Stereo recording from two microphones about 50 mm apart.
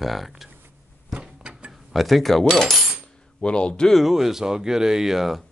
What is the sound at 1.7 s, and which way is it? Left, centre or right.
Speech, centre.